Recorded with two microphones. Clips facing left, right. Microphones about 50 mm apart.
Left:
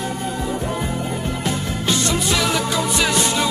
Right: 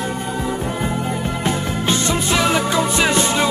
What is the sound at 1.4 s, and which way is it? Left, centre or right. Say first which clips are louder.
Music: right 3 dB; right.